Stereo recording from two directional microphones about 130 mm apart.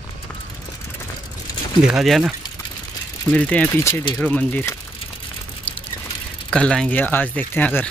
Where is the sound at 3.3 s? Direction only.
10° left (ahead or behind).